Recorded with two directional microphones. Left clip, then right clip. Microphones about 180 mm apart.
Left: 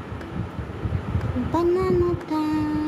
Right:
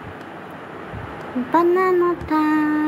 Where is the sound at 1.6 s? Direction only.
35° right (ahead or behind).